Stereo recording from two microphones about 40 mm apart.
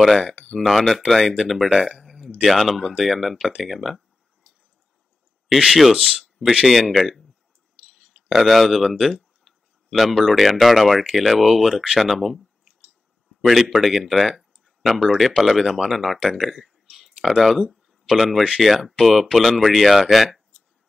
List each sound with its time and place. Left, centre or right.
0.7 s speech: centre
5.7 s speech: centre
7.9 s a sound: centre
10.1 s speech: centre
14.3 s a sound: centre
15.1 s speech: centre